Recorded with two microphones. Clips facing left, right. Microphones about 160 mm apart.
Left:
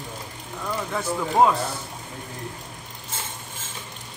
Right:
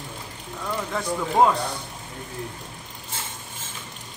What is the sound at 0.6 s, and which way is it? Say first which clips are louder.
Speech: even; centre (ahead or behind).